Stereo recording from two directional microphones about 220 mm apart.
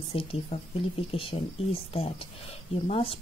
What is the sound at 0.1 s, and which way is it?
Speech, 25° left (ahead or behind).